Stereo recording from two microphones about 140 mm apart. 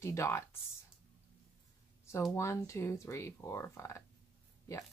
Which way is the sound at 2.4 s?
20° left (ahead or behind).